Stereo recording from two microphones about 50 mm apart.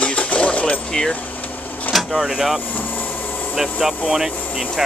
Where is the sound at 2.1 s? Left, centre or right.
Centre.